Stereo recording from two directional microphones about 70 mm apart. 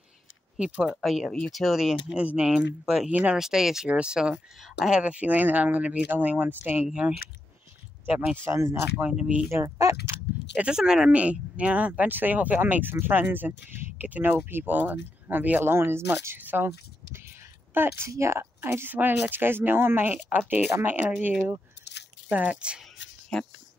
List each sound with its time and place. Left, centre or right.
0.6 s speech: centre
2.5 s speech: centre
3.1 s speech: right
3.3 s speech: centre
5.0 s speech: right
6.9 s speech: centre
8.5 s speech: right
9.0 s speech: right
9.5 s speech: right
10.5 s speech: centre; by 18.0 s right
18.0 s speech: right
22.3 s speech: centre
23.3 s speech: centre